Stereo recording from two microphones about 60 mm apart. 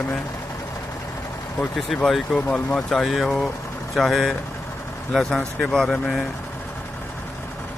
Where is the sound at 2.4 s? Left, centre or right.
Centre.